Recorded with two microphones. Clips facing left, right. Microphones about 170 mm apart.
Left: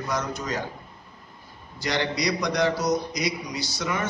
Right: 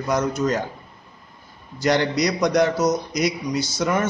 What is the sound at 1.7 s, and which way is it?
A man's voice, 50° right (ahead or behind).